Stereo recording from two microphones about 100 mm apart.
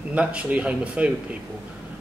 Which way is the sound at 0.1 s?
10° right (ahead or behind).